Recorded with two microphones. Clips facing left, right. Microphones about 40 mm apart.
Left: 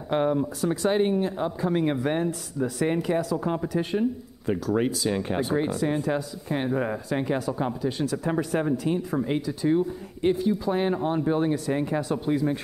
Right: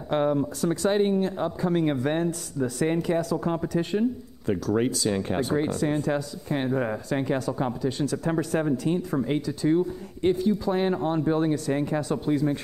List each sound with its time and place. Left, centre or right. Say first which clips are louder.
0.1 s speech: even; centre